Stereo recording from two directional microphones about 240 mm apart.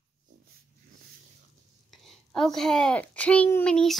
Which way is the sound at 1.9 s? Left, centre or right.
Centre.